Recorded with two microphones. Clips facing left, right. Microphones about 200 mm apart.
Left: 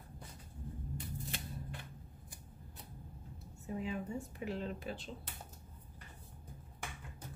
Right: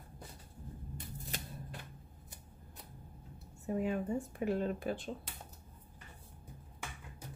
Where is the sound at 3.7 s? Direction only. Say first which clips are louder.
Right 5 dB; 50° right (ahead or behind).